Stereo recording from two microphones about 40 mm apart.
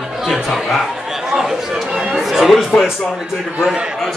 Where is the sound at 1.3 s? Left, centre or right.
Centre.